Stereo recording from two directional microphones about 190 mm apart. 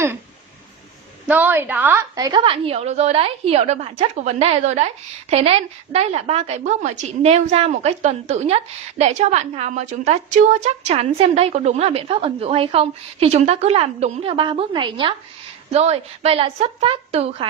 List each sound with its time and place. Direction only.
1.2 s a woman's voice: 10° right (ahead or behind)
2.1 s a woman's voice: 20° right (ahead or behind)